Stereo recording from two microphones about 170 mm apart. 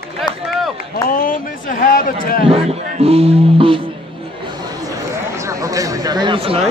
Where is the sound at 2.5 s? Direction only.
35° right (ahead or behind).